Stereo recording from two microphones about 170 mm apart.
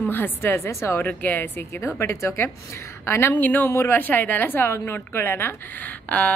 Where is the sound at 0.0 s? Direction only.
10° left (ahead or behind).